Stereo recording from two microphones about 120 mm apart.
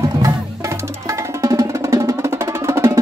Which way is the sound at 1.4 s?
25° right (ahead or behind).